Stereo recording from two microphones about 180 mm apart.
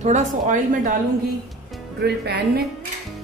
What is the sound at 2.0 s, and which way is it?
Speech, 60° right (ahead or behind).